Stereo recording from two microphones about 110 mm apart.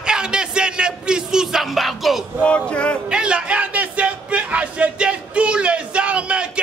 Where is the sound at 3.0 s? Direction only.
10° right (ahead or behind).